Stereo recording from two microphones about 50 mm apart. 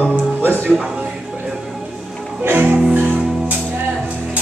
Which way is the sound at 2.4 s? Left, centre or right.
Right.